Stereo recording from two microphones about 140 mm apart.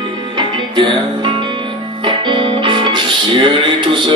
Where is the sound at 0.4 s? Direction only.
35° right (ahead or behind).